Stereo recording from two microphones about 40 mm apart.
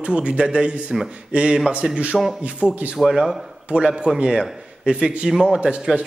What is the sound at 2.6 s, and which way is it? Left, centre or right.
Speech, right.